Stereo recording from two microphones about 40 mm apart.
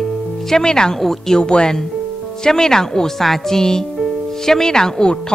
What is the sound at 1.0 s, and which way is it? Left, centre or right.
Speech, centre.